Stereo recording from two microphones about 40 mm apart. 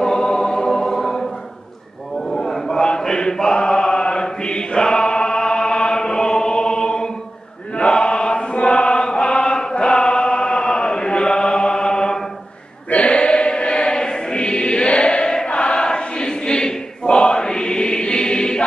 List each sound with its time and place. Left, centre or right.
0.0 s choir: centre
2.1 s a sound: centre
3.0 s mantra: centre
7.7 s chant: left
12.9 s choir: left